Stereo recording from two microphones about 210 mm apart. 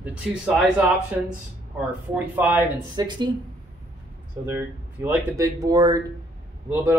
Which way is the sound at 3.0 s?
20° right (ahead or behind).